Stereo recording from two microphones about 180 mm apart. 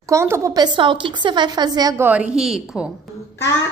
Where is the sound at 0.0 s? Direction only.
15° right (ahead or behind).